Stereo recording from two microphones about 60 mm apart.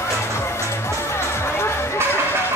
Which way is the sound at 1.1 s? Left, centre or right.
Left.